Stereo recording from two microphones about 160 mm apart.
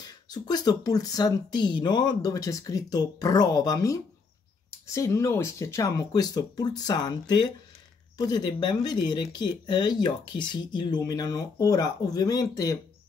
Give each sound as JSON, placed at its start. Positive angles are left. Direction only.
{"t": 0.0, "sound": "speech", "side_deg": 25}